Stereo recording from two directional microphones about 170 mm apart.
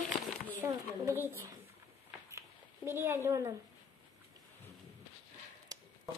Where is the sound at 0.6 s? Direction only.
15° right (ahead or behind).